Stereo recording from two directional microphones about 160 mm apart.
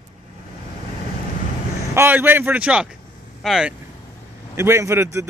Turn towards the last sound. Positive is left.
turn(degrees=-15)  # may be behind; listen again after turning